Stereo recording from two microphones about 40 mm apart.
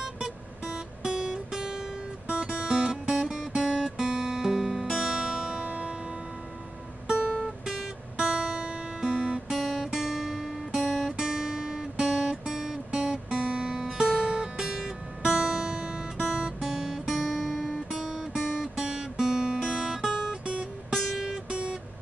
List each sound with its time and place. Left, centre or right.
0.0 s music: centre
2.2 s music: right
3.1 s guitar: centre
5.7 s music: right
7.6 s music: centre
8.2 s guitar: right
9.5 s guitar: centre
10.8 s music: centre
11.1 s guitar: centre
13.4 s guitar: right
14.6 s music: centre
14.9 s guitar: centre
17.8 s music: centre
21.5 s music: right